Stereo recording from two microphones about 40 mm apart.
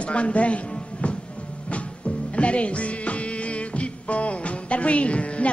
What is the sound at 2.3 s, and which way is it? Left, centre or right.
Music, left.